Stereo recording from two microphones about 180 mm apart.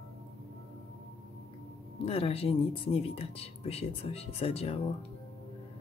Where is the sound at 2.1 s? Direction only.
35° left (ahead or behind).